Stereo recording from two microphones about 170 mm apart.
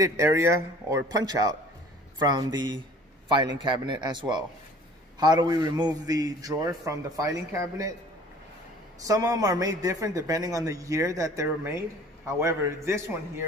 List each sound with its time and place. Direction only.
0.0 s a man's voice: 15° right (ahead or behind)
9.0 s a man's voice: 20° right (ahead or behind)